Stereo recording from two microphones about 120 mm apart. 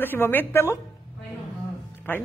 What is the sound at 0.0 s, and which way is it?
Speech, 15° left (ahead or behind).